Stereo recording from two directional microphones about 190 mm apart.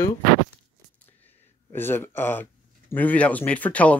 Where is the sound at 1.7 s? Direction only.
10° left (ahead or behind).